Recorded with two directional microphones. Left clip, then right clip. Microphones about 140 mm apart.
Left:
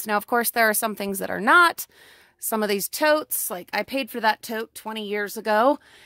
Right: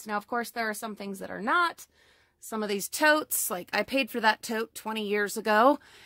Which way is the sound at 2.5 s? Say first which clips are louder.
Left 8 dB; 55° left (ahead or behind).